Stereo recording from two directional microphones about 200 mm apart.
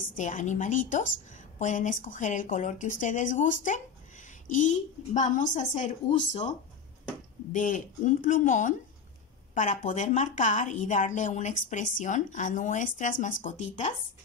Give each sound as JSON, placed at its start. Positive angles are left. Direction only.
{"t": 0.2, "sound": "speech", "side_deg": 40}
{"t": 7.5, "sound": "speech", "side_deg": 40}